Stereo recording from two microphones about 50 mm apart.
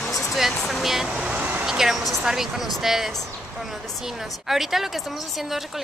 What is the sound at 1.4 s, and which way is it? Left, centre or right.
Speech, right.